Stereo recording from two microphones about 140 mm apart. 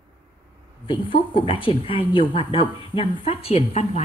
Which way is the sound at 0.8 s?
40° left (ahead or behind).